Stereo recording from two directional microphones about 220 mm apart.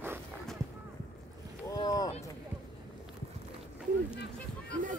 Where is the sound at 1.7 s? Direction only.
15° left (ahead or behind).